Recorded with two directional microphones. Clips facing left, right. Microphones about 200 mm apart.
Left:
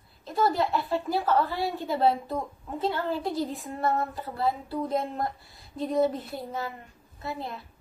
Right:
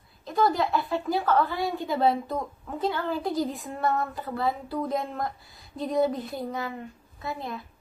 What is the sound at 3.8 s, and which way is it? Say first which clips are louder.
Speech: right 1 dB; 35° left (ahead or behind).